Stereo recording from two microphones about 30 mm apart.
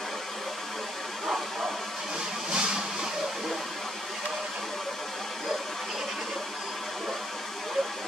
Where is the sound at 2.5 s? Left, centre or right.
Right.